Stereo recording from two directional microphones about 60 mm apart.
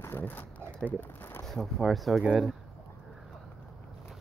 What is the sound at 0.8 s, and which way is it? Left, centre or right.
Speech, left.